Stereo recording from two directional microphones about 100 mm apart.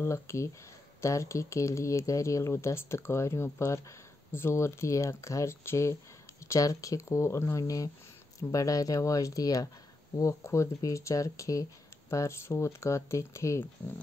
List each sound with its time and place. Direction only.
0.0 s speech: 30° left (ahead or behind)